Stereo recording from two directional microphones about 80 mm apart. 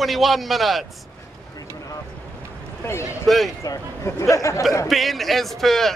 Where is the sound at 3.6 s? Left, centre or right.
Left.